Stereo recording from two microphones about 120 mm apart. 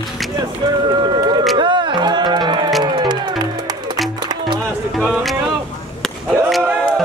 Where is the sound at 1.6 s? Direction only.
40° right (ahead or behind).